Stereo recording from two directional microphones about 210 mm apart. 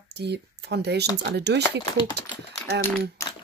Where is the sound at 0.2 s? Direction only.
55° right (ahead or behind).